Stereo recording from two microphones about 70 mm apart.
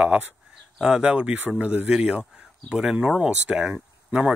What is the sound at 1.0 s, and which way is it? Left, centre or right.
Speech, centre.